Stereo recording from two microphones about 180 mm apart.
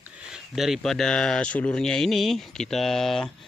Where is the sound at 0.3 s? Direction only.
Centre (ahead or behind).